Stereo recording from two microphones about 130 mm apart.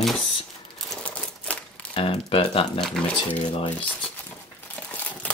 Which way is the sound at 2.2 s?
45° left (ahead or behind).